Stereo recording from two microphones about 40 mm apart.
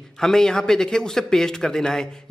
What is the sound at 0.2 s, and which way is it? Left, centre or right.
Speech, centre.